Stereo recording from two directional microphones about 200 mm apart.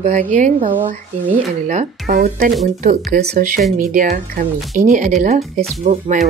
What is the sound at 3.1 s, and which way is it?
Speech, 40° right (ahead or behind).